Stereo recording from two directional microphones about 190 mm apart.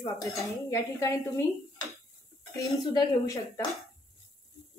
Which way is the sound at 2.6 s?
20° left (ahead or behind).